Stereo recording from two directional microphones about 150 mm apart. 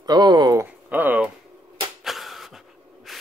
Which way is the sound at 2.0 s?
Centre (ahead or behind).